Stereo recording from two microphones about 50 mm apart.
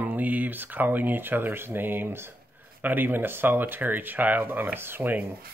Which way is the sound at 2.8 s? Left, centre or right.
Right.